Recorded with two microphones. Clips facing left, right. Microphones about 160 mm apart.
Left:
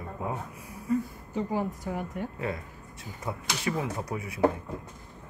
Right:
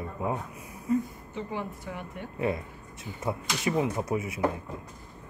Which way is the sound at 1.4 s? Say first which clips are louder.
Left 5 dB; 40° left (ahead or behind).